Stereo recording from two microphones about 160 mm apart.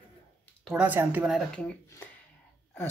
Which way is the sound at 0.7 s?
10° right (ahead or behind).